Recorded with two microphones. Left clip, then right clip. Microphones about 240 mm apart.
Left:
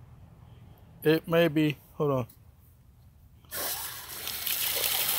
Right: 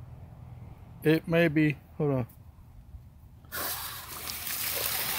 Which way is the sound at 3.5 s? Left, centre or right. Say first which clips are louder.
Even; left.